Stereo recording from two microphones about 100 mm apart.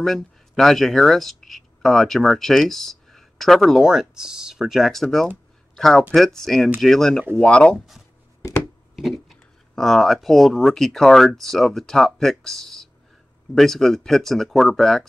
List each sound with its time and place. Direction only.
0.0 s speech: centre (ahead or behind)
8.4 s a sound: 30° left (ahead or behind)
8.9 s speech: centre (ahead or behind)